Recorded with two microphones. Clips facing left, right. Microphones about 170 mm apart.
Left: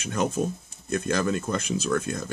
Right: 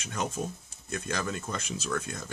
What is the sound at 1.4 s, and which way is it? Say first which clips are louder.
Speech: left 8 dB; 75° left (ahead or behind).